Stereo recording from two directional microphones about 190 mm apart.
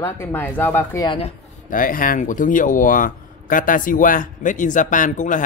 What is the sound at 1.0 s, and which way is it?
Speech, 30° left (ahead or behind).